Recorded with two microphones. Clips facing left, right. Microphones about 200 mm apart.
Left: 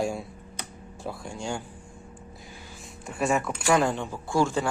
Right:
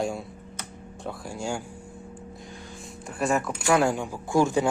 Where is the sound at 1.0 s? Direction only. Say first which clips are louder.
Right 1 dB; 5° right (ahead or behind).